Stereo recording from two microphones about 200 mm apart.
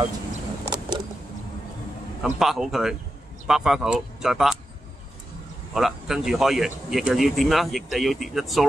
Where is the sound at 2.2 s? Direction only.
Centre (ahead or behind).